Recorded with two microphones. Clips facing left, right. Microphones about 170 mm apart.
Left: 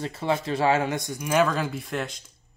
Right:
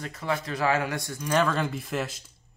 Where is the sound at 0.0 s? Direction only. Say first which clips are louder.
Left 4 dB; 30° left (ahead or behind).